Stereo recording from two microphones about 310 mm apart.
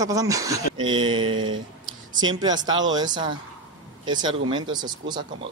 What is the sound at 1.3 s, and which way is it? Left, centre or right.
Speech, right.